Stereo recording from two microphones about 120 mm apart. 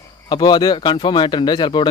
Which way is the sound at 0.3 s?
35° left (ahead or behind).